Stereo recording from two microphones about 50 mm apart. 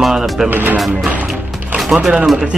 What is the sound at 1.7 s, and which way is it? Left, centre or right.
Music, centre.